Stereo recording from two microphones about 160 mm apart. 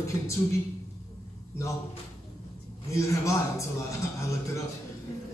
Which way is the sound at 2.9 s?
20° left (ahead or behind).